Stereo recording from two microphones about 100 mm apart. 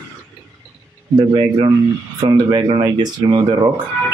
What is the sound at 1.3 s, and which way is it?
A man's voice, 50° right (ahead or behind).